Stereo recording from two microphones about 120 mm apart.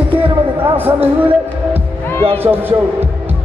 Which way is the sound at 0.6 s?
15° right (ahead or behind).